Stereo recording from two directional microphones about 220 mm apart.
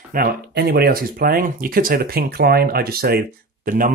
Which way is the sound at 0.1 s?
45° right (ahead or behind).